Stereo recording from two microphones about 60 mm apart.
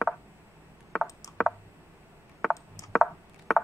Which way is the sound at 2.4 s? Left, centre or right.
Centre.